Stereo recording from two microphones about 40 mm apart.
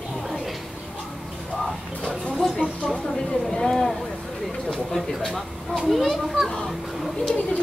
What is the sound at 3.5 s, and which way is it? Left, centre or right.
Speech, centre.